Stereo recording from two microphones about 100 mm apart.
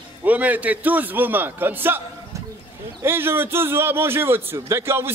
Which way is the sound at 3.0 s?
25° right (ahead or behind).